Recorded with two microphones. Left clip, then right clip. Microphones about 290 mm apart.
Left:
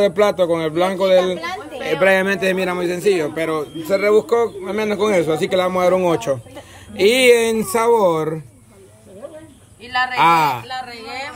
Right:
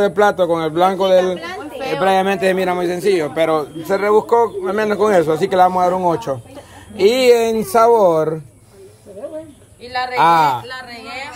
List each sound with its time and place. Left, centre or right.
0.0 s a man's voice: centre
10.2 s speech: centre